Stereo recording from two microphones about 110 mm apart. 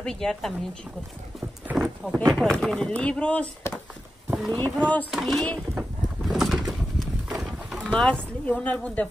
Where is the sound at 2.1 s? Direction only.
5° left (ahead or behind).